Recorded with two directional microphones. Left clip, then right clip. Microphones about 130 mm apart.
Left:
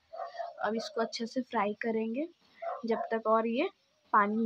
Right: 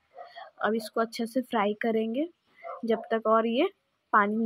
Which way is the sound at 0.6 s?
25° right (ahead or behind).